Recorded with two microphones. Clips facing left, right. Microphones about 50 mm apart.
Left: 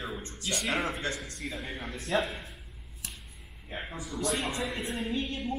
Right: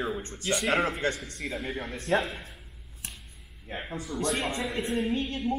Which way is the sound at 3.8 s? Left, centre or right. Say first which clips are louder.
Right 3 dB; centre.